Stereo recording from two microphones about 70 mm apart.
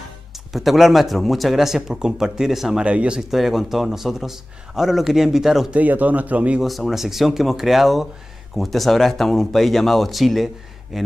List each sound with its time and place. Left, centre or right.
0.5 s speech: centre
2.8 s speech: centre
3.2 s speech: centre
5.7 s a man's voice: right
6.6 s speech: centre